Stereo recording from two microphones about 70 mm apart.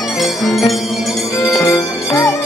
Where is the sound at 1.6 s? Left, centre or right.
Left.